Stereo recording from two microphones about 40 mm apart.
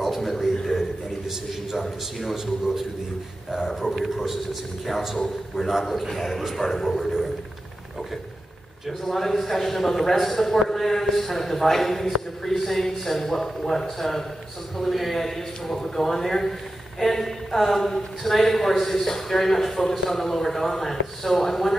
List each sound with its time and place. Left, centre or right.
0.0 s a sound: centre
1.8 s a man's voice: centre
8.8 s a man's voice: centre